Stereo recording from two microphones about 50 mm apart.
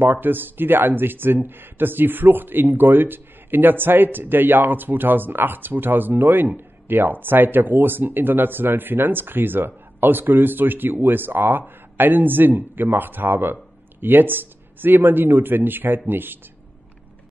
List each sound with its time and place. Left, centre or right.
0.0 s a man's voice: right